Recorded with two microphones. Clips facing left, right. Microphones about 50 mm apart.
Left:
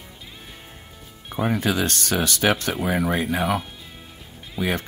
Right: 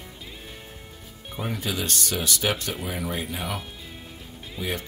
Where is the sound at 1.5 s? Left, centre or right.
Left.